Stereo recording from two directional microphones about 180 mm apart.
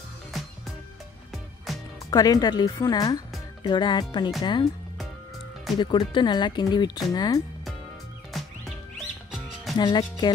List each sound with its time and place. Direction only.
1.7 s music: centre (ahead or behind)
2.0 s speech: 20° left (ahead or behind)
5.8 s speech: 25° left (ahead or behind)
8.3 s music: centre (ahead or behind)
9.8 s speech: 25° left (ahead or behind)